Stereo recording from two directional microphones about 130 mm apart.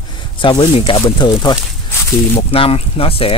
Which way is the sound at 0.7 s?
45° left (ahead or behind).